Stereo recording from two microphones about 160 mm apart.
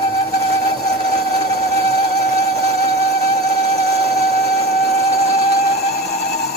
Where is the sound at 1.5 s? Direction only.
20° left (ahead or behind).